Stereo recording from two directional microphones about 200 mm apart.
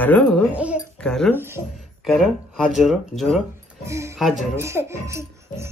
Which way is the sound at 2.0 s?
Centre (ahead or behind).